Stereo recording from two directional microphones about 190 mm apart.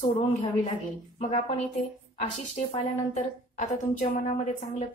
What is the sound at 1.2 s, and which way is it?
Speech, 35° left (ahead or behind).